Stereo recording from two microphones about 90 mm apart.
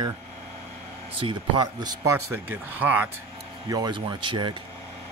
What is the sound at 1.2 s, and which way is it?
Speech, 55° right (ahead or behind).